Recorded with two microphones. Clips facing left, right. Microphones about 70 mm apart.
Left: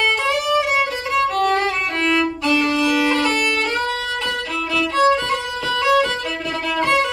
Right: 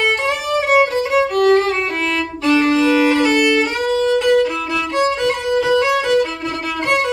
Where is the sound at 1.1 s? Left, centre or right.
Centre.